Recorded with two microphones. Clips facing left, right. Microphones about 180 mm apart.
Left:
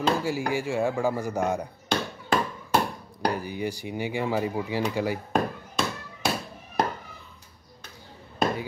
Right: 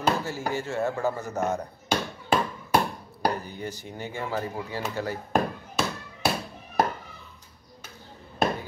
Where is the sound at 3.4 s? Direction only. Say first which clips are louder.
Left 5 dB; 10° left (ahead or behind).